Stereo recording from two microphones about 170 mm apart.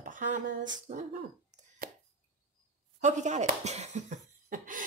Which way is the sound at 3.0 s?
45° right (ahead or behind).